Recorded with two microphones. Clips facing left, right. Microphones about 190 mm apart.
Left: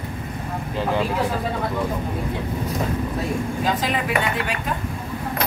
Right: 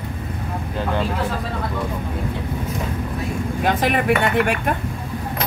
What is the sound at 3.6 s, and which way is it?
Chink, 60° right (ahead or behind).